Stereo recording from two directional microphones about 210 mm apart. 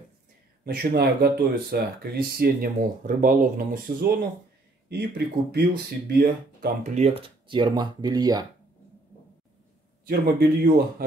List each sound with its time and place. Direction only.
0.7 s speech: 50° right (ahead or behind); by 8.5 s 20° right (ahead or behind)
10.0 s speech: 45° right (ahead or behind)